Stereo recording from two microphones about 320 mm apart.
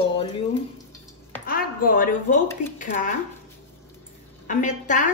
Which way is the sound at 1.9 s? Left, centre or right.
Left.